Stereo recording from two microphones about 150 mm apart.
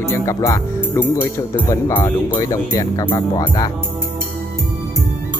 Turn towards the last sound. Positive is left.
turn(degrees=25)  # may be behind; listen again after turning